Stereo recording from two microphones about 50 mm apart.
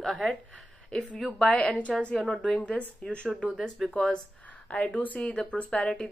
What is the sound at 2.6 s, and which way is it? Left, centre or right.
A woman's voice, left.